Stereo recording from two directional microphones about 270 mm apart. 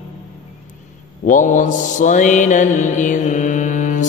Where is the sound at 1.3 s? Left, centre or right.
Left.